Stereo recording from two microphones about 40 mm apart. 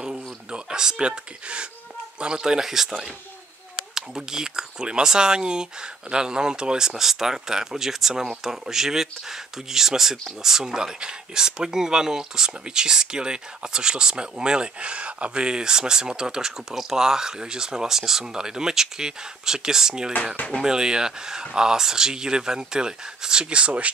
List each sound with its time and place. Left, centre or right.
0.0 s a sound: right
2.1 s speech: right
7.0 s speech: centre; by 23.9 s right